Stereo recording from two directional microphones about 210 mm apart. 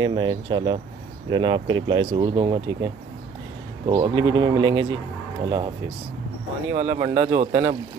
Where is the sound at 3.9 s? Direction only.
20° right (ahead or behind).